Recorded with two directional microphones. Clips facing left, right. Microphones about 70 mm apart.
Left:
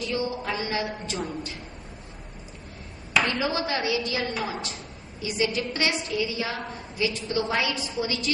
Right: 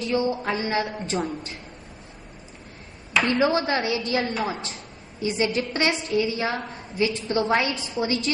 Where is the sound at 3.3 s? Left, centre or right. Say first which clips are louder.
Right 5 dB; right.